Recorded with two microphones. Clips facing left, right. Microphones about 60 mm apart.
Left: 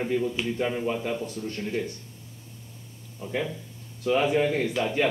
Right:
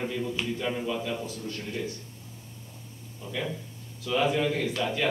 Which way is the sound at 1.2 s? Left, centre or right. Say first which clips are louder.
Left 3 dB; left.